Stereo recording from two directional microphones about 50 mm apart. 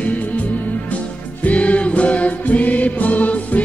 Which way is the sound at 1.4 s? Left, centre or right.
Left.